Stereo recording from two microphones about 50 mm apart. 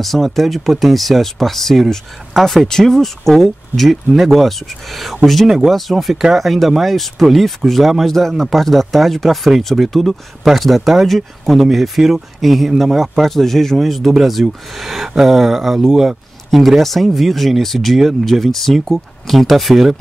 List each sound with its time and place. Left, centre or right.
0.0 s speech: centre